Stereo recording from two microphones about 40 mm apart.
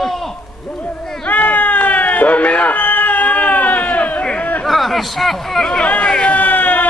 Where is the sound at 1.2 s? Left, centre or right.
Left.